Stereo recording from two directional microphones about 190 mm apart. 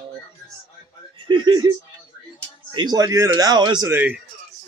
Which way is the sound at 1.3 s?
20° right (ahead or behind).